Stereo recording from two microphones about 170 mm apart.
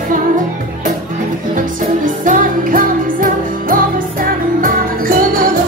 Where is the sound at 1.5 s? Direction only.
50° right (ahead or behind).